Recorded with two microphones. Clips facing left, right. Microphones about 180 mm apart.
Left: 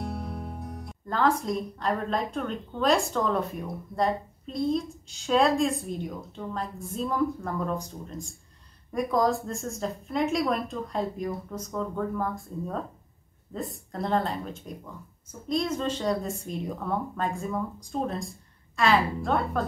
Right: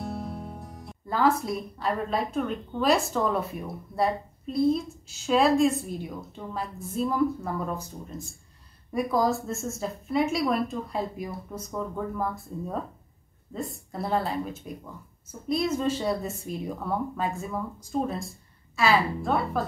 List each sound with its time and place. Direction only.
0.1 s music: centre (ahead or behind)
0.8 s a woman's voice: 5° right (ahead or behind)